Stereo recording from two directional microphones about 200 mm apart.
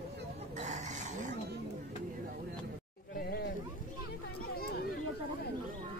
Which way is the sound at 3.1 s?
50° left (ahead or behind).